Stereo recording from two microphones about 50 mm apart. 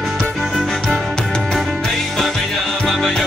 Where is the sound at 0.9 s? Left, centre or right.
Centre.